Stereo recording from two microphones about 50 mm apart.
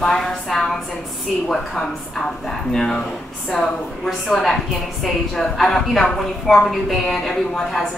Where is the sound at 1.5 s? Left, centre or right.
Centre.